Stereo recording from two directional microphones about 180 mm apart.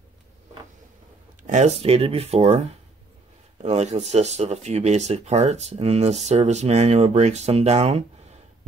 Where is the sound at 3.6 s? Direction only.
40° right (ahead or behind).